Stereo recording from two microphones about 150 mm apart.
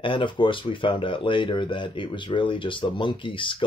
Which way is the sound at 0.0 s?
35° left (ahead or behind).